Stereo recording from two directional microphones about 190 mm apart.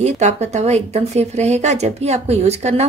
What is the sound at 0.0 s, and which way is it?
Speech, 35° right (ahead or behind).